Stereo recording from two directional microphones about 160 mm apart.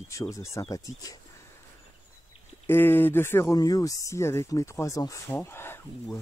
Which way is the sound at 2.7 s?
15° left (ahead or behind).